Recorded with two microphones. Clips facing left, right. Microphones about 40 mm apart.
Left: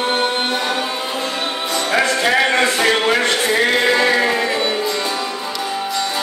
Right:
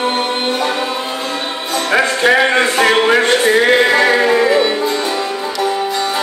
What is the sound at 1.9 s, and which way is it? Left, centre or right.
Music, right.